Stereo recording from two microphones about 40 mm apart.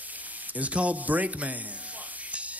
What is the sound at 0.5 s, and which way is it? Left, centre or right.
Speech, right.